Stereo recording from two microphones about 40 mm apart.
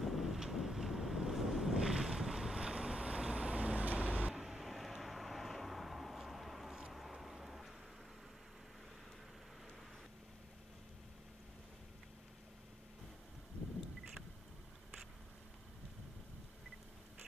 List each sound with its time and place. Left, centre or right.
0.0 s wind noise: centre
1.8 s boat: centre
4.3 s vehicle: centre
6.9 s a sound: centre